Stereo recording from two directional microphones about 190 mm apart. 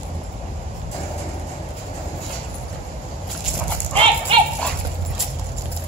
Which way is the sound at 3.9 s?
30° right (ahead or behind).